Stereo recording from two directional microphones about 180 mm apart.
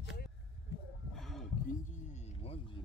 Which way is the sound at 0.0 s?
65° left (ahead or behind).